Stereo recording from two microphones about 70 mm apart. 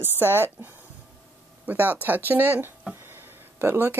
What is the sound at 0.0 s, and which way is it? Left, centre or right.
Speech, right.